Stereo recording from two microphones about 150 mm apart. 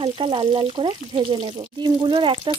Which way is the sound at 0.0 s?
35° right (ahead or behind).